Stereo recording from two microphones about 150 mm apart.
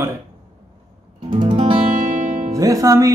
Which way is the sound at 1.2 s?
30° right (ahead or behind).